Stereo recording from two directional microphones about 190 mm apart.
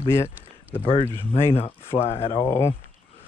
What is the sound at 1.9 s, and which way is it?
Speech, 30° left (ahead or behind).